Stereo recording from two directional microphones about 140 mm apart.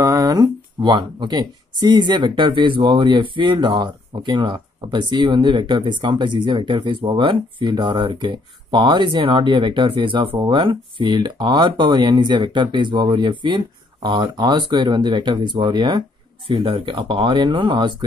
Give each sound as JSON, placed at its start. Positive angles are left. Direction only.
{"t": 0.0, "sound": "speech", "side_deg": -25}